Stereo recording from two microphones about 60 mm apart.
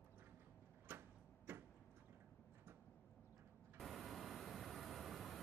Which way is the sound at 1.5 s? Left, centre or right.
Right.